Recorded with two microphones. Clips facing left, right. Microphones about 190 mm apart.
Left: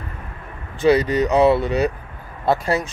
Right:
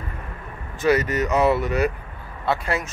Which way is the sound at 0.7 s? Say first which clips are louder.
Left 4 dB; 30° left (ahead or behind).